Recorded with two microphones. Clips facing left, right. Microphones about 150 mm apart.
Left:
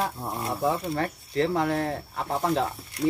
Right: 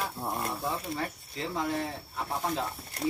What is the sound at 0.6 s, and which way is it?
Speech, 65° left (ahead or behind).